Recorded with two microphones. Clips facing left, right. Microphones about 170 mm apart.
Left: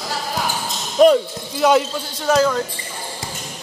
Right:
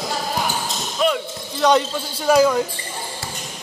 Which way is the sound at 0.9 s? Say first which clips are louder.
Left 9 dB; 40° left (ahead or behind).